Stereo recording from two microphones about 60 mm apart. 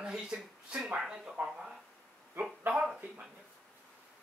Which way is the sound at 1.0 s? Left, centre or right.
Centre.